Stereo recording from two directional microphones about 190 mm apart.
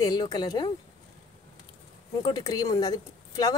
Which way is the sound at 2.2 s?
20° left (ahead or behind).